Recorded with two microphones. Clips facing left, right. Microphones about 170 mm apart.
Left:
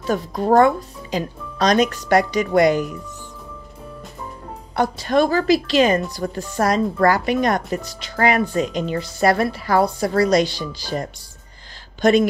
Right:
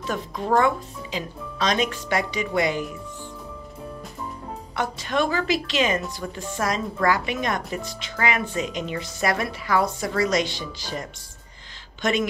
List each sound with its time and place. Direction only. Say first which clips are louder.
0.0 s speech: left 7 dB; 40° left (ahead or behind)
4.7 s speech: left 7 dB; 35° left (ahead or behind)